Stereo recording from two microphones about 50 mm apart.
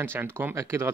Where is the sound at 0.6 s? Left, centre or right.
Right.